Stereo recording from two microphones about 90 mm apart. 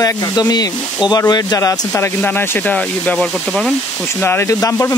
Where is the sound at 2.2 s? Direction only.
20° left (ahead or behind).